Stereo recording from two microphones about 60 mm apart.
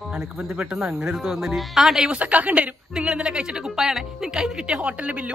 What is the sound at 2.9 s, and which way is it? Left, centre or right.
A woman's voice, centre.